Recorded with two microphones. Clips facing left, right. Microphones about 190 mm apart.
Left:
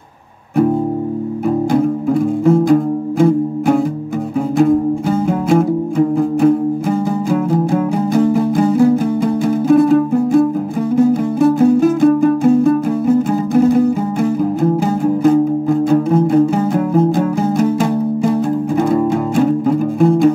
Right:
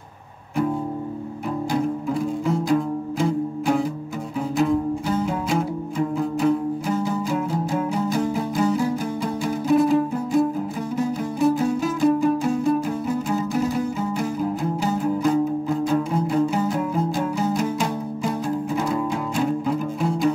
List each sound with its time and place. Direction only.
1.7 s music: 55° left (ahead or behind)